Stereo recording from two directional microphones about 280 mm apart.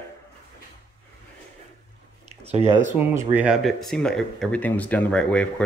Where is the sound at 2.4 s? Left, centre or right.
Right.